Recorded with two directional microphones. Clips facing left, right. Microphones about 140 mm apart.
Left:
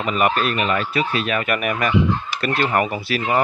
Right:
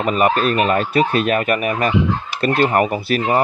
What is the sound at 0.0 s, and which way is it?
Speech, 40° right (ahead or behind).